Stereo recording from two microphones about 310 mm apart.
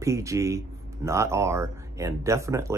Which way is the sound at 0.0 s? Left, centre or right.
Centre.